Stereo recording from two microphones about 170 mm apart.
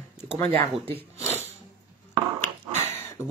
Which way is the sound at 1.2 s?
15° left (ahead or behind).